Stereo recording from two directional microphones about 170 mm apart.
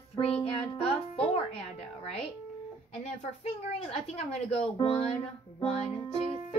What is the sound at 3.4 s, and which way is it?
Speech, 40° left (ahead or behind).